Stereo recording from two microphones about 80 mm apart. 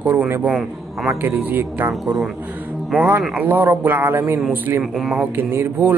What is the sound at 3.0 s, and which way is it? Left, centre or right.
Speech, right.